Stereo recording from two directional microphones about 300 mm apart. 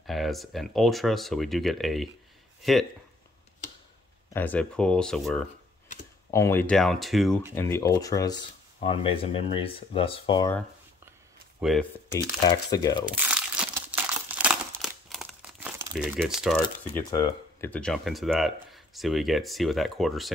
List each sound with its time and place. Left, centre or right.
0.0 s speech: centre
4.3 s speech: centre
11.6 s speech: centre
12.4 s speech: centre
13.0 s crumpling: centre
16.6 s speech: centre